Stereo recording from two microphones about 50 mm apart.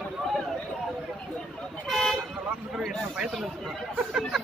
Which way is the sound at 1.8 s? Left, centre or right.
Centre.